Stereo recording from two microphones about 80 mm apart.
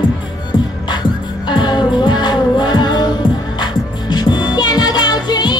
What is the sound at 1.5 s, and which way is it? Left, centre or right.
Music, left.